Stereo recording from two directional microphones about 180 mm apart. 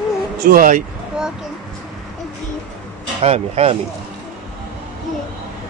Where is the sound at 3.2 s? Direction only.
35° right (ahead or behind).